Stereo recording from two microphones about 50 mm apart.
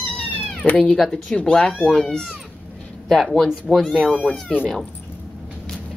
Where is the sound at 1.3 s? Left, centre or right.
Centre.